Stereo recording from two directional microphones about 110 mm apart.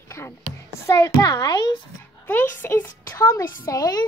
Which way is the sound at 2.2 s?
20° left (ahead or behind).